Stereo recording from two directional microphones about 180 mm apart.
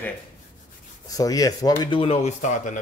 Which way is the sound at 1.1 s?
20° left (ahead or behind).